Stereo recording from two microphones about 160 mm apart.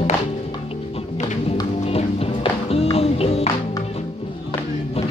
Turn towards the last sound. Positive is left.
turn(degrees=40)  # may be behind; listen again after turning